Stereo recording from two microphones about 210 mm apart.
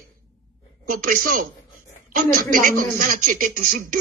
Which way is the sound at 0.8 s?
40° right (ahead or behind).